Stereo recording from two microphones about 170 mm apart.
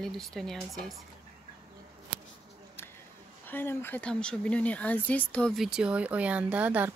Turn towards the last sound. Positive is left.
turn(degrees=-10)  # may be behind; listen again after turning